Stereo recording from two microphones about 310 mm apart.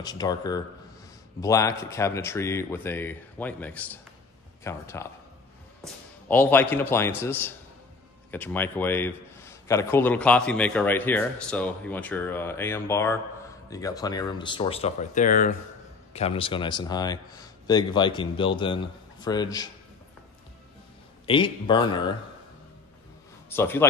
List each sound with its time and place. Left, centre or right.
0.0 s a man's voice: centre
6.2 s a man's voice: centre
21.3 s a man's voice: centre
23.5 s a man's voice: centre